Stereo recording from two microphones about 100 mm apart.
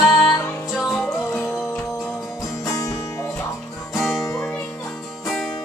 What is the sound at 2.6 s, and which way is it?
Music, 35° left (ahead or behind).